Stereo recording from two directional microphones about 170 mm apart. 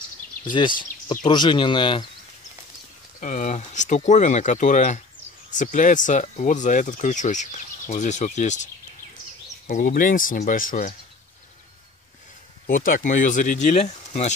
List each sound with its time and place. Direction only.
1.2 s speech: 25° left (ahead or behind)
3.2 s speech: 45° left (ahead or behind)
9.7 s speech: 55° left (ahead or behind)
12.6 s speech: 55° left (ahead or behind)